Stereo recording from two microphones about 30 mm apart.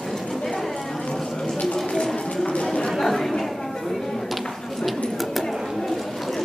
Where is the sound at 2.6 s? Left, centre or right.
Left.